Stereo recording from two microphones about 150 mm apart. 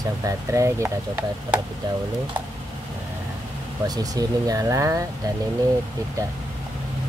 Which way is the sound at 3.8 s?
25° right (ahead or behind).